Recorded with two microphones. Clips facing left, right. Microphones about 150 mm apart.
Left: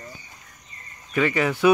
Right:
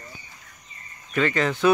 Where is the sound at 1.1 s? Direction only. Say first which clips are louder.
Left 1 dB; 10° left (ahead or behind).